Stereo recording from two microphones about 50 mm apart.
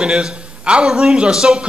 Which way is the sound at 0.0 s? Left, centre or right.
Centre.